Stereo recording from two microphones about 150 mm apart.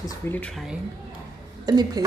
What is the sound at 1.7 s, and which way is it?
Speech, 25° right (ahead or behind).